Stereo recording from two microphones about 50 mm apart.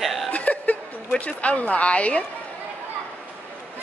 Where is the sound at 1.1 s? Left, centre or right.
Left.